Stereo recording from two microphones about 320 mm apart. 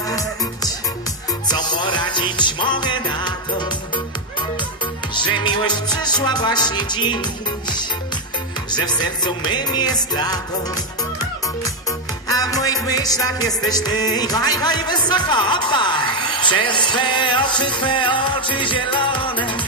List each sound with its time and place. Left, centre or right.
0.1 s music: centre
5.1 s music: centre
8.7 s music: centre
12.3 s music: centre